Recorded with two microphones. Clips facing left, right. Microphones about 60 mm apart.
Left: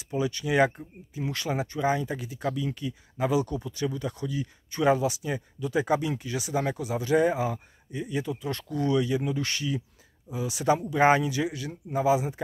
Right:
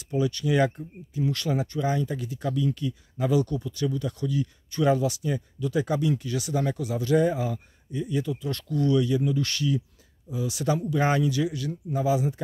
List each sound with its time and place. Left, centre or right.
0.1 s speech: centre